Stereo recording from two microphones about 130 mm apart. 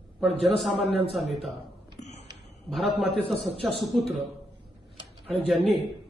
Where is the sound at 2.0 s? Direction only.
65° left (ahead or behind).